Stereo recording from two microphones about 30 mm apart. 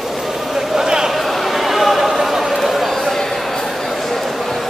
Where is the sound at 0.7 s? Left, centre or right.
Right.